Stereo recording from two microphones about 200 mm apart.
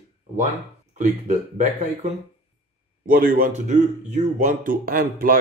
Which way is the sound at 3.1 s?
45° right (ahead or behind).